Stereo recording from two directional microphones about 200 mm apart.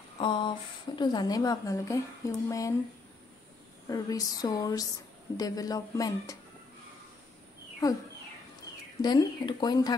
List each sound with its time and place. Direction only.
0.2 s a woman's voice: 25° left (ahead or behind)
3.9 s speech: 20° left (ahead or behind)
9.0 s a woman's voice: 20° left (ahead or behind)